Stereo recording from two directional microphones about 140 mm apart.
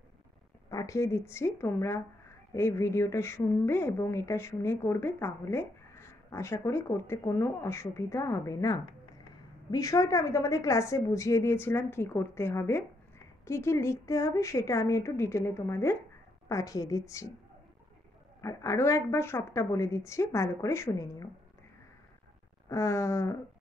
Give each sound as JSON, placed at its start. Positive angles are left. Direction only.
{"t": 0.7, "sound": "a woman's voice", "side_deg": 25}
{"t": 18.4, "sound": "a woman's voice", "side_deg": 20}
{"t": 22.7, "sound": "a woman's voice", "side_deg": 20}